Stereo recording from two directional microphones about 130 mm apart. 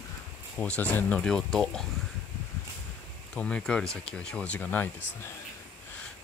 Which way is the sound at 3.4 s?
10° left (ahead or behind).